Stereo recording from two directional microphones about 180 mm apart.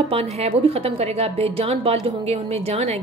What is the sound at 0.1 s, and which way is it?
A woman's voice, 35° right (ahead or behind).